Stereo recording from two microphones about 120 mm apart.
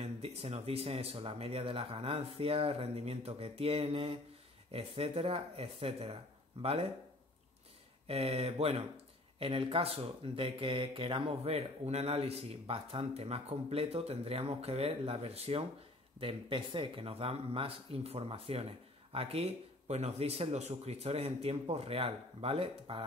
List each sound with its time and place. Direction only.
0.0 s speech: 60° right (ahead or behind)
8.1 s speech: 55° right (ahead or behind)
16.2 s speech: 45° right (ahead or behind)